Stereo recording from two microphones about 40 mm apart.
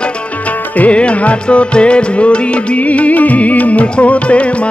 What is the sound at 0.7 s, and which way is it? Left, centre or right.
Music, left.